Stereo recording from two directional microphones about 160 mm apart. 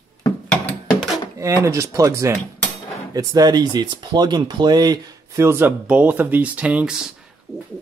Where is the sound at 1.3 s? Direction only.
20° right (ahead or behind).